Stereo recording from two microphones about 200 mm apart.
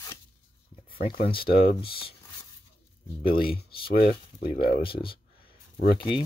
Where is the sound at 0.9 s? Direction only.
45° left (ahead or behind).